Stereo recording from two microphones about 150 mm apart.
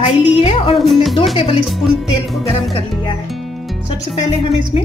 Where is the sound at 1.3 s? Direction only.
35° left (ahead or behind).